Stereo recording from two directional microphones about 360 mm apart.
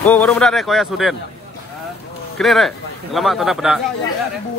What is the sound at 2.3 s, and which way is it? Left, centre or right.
Speech, centre.